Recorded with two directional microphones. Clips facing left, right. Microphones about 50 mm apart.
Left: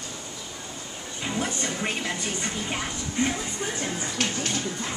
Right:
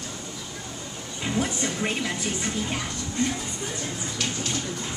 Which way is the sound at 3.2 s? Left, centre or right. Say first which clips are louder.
Left 1 dB; left.